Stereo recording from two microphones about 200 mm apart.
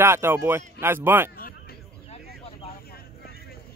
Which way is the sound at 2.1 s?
30° left (ahead or behind).